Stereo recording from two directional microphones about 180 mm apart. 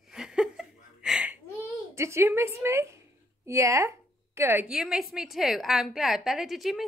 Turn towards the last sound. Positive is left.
turn(degrees=0)  # may be behind; listen again after turning